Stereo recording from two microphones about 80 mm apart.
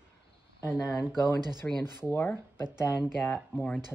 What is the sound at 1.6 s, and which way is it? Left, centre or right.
Speech, centre.